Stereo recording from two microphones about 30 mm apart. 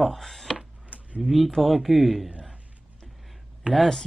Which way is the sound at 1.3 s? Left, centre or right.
Centre.